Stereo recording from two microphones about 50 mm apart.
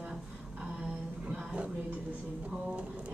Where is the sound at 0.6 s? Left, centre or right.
Right.